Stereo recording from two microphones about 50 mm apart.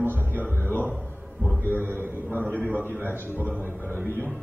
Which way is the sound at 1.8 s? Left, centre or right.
Right.